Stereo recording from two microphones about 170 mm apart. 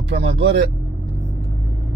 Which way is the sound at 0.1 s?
80° right.